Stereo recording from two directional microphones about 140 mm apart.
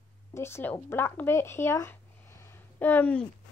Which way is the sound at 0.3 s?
20° left (ahead or behind).